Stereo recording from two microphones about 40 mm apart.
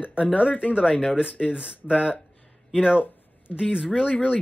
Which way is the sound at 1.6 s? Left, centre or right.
Right.